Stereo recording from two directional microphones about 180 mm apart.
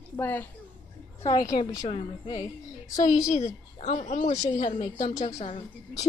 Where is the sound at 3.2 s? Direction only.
40° left (ahead or behind).